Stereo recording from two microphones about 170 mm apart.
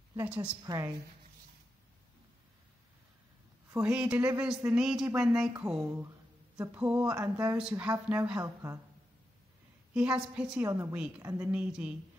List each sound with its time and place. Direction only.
0.2 s a woman's voice: 10° right (ahead or behind)
3.7 s a woman's voice: 5° right (ahead or behind)
9.9 s a woman's voice: 5° right (ahead or behind)
11.5 s a woman's voice: 5° right (ahead or behind)